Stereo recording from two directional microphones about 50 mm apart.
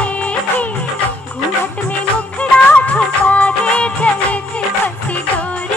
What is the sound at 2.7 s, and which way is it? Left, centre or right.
Music, left.